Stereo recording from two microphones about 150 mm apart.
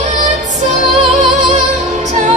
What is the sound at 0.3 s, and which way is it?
Music, 50° right (ahead or behind).